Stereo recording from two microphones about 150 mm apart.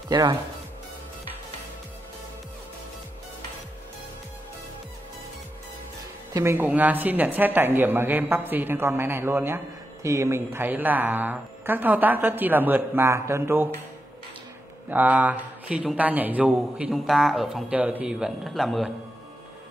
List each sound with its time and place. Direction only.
0.1 s speech: 25° right (ahead or behind)
6.3 s a man's voice: 15° right (ahead or behind)
14.9 s a man's voice: 10° right (ahead or behind)